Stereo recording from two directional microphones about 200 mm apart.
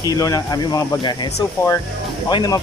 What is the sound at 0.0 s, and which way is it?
Speech, 15° left (ahead or behind).